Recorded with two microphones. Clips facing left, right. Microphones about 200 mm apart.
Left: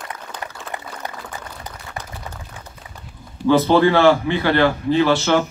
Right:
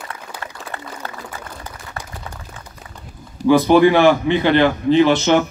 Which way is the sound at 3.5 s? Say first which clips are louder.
Right 3 dB; 15° right (ahead or behind).